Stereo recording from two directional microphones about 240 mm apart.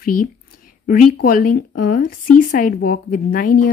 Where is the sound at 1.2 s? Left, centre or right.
Left.